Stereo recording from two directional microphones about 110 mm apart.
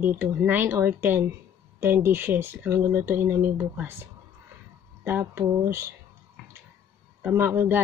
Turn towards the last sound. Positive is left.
turn(degrees=-20)  # may be behind; listen again after turning